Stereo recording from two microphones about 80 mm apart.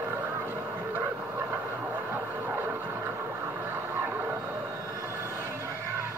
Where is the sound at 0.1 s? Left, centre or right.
Right.